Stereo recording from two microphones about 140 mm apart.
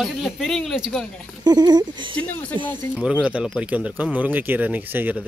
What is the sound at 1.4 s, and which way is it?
Speech, 30° right (ahead or behind).